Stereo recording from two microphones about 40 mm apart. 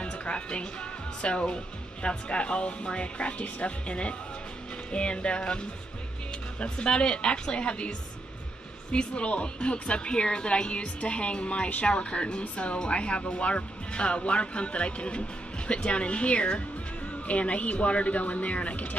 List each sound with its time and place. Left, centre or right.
0.0 s speech: left
8.9 s speech: left